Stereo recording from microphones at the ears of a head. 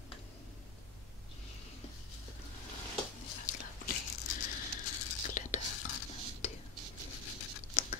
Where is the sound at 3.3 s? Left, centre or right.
Left.